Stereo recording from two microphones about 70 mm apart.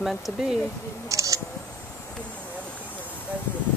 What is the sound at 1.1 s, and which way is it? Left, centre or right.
Speech, right.